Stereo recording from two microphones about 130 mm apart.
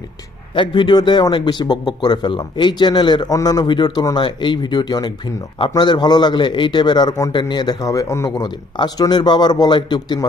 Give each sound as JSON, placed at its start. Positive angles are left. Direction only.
{"t": 0.6, "sound": "a man's voice", "side_deg": 35}